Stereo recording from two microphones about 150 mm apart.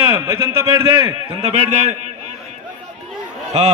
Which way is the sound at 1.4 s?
45° right (ahead or behind).